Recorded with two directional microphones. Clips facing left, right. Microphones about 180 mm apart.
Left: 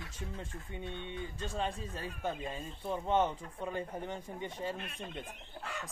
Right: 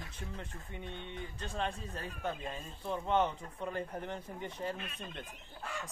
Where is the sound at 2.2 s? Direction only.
5° left (ahead or behind).